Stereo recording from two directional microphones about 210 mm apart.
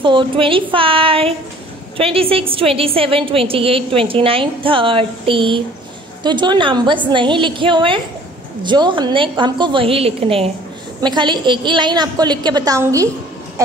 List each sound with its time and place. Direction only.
0.0 s a woman's voice: 25° right (ahead or behind)